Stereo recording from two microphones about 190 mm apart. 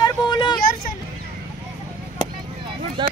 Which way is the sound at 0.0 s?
25° left (ahead or behind).